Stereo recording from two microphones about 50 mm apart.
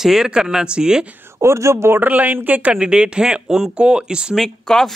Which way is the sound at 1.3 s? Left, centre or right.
Right.